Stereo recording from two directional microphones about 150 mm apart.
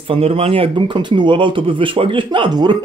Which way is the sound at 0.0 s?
40° right (ahead or behind).